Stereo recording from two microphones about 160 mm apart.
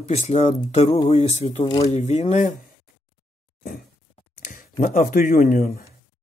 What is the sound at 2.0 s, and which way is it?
Speech, 45° left (ahead or behind).